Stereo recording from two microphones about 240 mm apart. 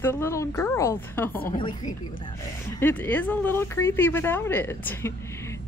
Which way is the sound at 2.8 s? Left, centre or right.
Centre.